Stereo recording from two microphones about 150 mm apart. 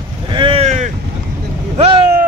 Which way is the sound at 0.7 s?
55° right (ahead or behind).